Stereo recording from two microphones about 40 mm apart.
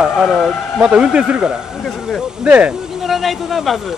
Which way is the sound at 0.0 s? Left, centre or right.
Centre.